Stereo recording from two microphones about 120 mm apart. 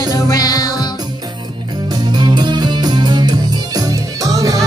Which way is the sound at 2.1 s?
35° right (ahead or behind).